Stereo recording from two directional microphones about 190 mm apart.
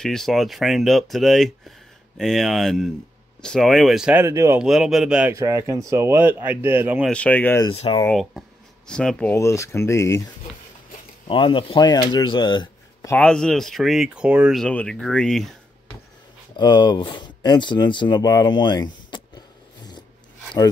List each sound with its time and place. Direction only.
0.0 s speech: centre (ahead or behind); by 4.6 s 15° right (ahead or behind)
4.6 s speech: centre (ahead or behind)
5.3 s speech: 15° right (ahead or behind)
7.1 s speech: 5° left (ahead or behind)
7.7 s speech: 30° left (ahead or behind)
8.1 s speech: centre (ahead or behind)
11.2 s speech: 25° left (ahead or behind)
13.1 s speech: 5° left (ahead or behind)
16.5 s speech: 20° left (ahead or behind)